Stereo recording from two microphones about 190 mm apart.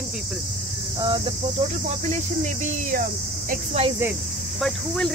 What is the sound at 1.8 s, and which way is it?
Speech, 35° right (ahead or behind).